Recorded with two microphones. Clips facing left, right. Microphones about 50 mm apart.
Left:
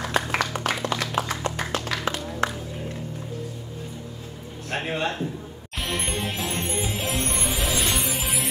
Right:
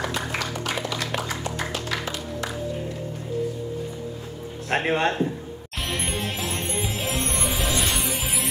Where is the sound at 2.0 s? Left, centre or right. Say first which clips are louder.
Left 4 dB; left.